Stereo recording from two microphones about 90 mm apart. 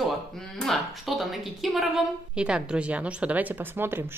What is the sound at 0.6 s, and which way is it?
A woman's voice, centre (ahead or behind).